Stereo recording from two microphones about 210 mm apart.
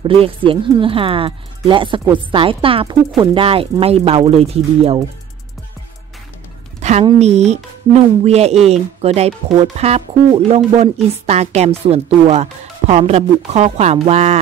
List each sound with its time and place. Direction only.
0.0 s speech: 25° right (ahead or behind)
6.8 s a sound: 30° right (ahead or behind)
7.1 s speech: 30° right (ahead or behind)